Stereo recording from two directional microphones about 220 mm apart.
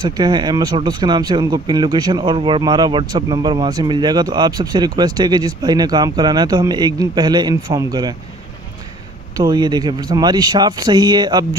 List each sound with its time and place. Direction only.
0.0 s speech: 20° right (ahead or behind)
9.4 s speech: 20° right (ahead or behind)